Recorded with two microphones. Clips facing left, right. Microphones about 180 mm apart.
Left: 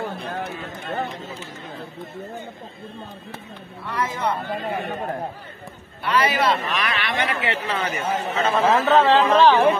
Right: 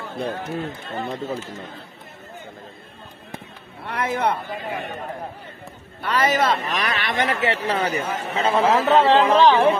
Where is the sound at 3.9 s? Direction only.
65° right (ahead or behind).